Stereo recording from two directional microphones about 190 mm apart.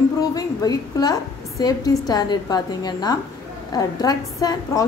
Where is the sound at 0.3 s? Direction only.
20° left (ahead or behind).